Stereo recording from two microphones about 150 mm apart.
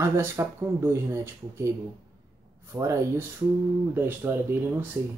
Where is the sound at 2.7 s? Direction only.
20° right (ahead or behind).